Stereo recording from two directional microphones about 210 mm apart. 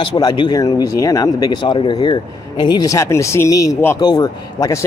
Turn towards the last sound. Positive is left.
turn(degrees=15)  # may be behind; listen again after turning